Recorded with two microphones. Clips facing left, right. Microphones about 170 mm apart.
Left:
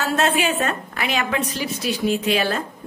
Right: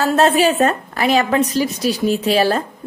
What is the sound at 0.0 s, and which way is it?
A woman's voice, 35° right (ahead or behind).